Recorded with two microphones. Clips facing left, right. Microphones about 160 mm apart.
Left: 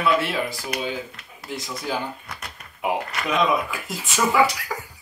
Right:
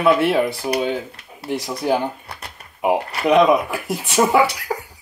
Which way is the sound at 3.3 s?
60° right (ahead or behind).